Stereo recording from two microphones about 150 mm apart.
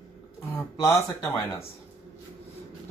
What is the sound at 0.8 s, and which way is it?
Speech, 20° left (ahead or behind).